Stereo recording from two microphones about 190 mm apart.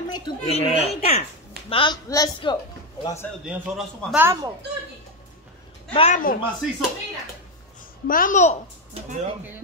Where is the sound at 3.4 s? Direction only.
Centre (ahead or behind).